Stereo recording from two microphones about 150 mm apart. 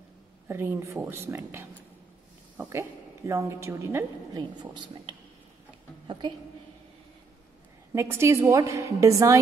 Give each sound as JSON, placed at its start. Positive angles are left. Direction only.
{"t": 0.5, "sound": "a woman's voice", "side_deg": -15}
{"t": 4.4, "sound": "a woman's voice", "side_deg": -30}
{"t": 7.9, "sound": "a woman's voice", "side_deg": -15}